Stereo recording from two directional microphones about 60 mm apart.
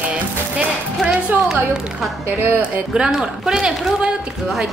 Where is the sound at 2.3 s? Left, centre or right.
Right.